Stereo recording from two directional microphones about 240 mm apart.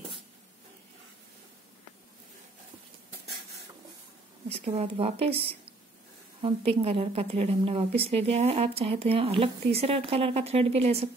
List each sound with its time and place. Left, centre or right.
4.5 s a woman's voice: right